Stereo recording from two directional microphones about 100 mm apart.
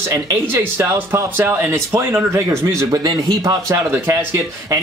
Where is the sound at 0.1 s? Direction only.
25° right (ahead or behind).